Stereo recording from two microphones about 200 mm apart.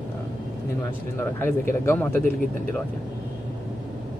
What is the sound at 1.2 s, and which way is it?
Speech, 10° left (ahead or behind).